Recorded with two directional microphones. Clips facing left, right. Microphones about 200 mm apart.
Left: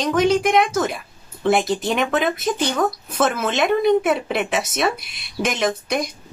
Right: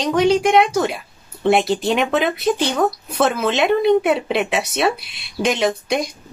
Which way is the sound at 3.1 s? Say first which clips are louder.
Right 2 dB; centre (ahead or behind).